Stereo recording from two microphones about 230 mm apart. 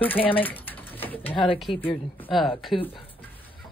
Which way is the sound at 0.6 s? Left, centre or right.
Centre.